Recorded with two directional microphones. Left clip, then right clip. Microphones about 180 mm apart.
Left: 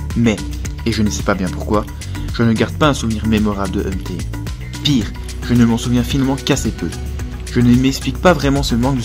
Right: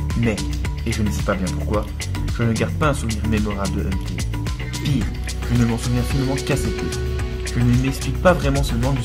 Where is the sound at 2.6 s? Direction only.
45° left (ahead or behind).